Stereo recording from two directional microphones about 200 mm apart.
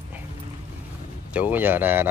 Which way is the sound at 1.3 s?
10° right (ahead or behind).